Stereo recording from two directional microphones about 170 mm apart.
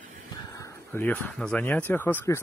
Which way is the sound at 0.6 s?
10° left (ahead or behind).